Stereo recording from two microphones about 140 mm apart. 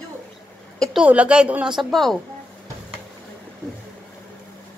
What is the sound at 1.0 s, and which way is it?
A woman's voice, 10° right (ahead or behind).